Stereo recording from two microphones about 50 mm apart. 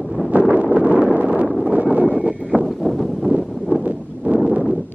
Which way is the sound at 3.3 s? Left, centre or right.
Right.